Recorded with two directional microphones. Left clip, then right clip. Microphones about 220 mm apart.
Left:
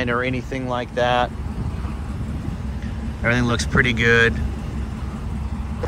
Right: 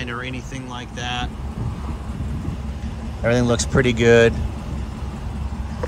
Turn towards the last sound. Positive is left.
turn(degrees=-30)  # may be behind; listen again after turning